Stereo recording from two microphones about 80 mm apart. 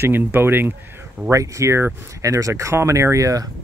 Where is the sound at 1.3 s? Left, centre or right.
Right.